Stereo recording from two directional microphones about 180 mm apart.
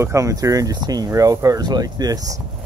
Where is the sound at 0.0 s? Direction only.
15° right (ahead or behind).